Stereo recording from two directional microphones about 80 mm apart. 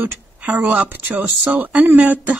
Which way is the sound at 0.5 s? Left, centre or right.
Right.